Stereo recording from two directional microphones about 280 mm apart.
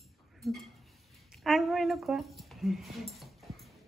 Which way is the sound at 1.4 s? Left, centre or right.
Centre.